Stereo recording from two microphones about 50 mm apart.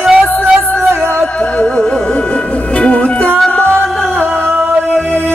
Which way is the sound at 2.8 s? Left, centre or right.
Left.